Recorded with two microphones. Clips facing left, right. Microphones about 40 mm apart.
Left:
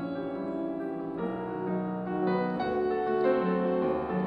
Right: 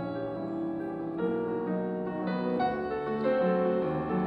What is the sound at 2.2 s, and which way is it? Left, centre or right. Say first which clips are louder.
Music: left 1 dB; centre.